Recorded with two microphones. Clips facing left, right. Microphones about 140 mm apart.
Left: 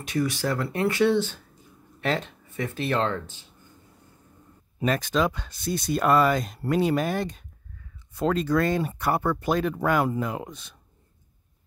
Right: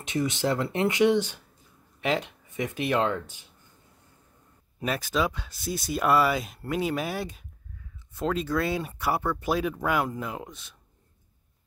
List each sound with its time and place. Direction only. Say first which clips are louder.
0.0 s speech: left 1 dB; 20° right (ahead or behind)
4.8 s speech: left 3 dB; 5° right (ahead or behind)